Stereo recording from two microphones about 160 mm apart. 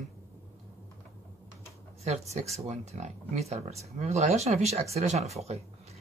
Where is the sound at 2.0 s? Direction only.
45° right (ahead or behind).